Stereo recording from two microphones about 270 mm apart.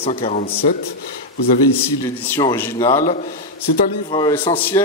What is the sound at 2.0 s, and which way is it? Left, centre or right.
A man's voice, centre.